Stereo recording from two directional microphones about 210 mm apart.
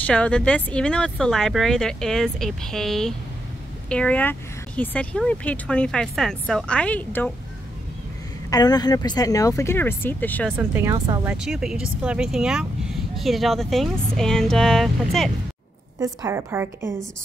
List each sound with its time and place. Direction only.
0.0 s a woman's voice: 5° left (ahead or behind)
8.5 s speech: 20° left (ahead or behind)
10.6 s speech: 10° right (ahead or behind)
11.4 s a woman's voice: centre (ahead or behind)
16.0 s speech: 15° right (ahead or behind)